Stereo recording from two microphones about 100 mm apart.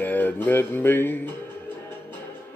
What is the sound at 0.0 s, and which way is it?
Music, 20° left (ahead or behind).